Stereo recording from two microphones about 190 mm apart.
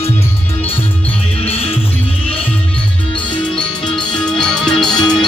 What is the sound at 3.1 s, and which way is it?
Music, 25° left (ahead or behind).